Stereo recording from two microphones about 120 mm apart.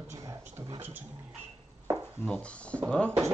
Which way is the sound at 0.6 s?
50° right (ahead or behind).